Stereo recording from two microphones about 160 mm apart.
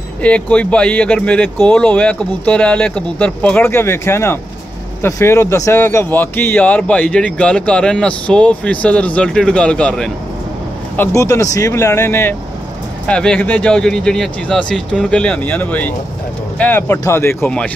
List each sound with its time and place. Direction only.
0.2 s speech: 10° left (ahead or behind)
11.0 s speech: 15° left (ahead or behind)